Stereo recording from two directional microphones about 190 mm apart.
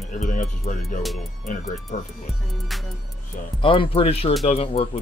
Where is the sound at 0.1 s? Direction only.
45° left (ahead or behind).